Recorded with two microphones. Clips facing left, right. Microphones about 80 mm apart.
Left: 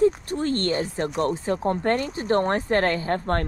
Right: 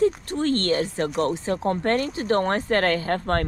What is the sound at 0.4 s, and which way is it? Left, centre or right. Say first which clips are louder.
Speech: right 3 dB; right.